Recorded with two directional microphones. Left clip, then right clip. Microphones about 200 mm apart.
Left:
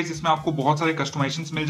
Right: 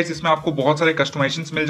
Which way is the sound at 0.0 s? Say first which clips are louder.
Right 4 dB; 20° right (ahead or behind).